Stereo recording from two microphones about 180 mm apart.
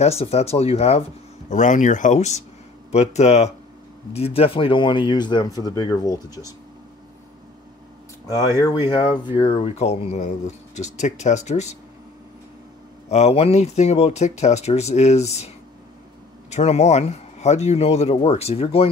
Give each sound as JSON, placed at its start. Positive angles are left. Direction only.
{"t": 0.0, "sound": "speech", "side_deg": 35}
{"t": 8.3, "sound": "speech", "side_deg": 20}
{"t": 13.1, "sound": "speech", "side_deg": 35}